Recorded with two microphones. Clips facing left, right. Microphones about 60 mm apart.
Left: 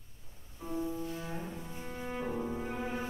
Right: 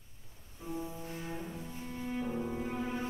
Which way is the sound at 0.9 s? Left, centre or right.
Right.